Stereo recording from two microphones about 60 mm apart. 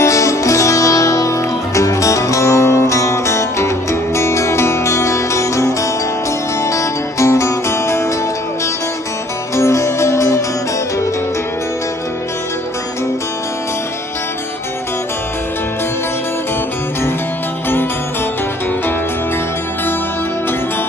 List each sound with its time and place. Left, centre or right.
0.0 s music: left
9.6 s music: left